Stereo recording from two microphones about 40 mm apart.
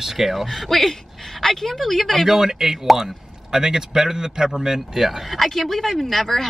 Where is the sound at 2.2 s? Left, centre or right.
Centre.